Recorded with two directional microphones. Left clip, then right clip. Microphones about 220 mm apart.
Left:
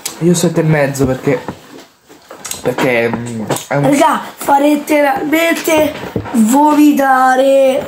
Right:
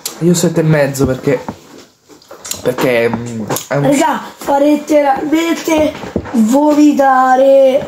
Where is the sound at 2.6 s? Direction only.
15° right (ahead or behind).